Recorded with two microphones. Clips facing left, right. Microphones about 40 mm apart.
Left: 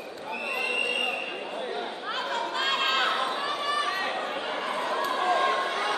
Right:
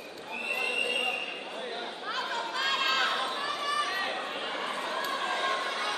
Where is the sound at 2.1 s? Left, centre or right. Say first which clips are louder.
Left 2 dB; left.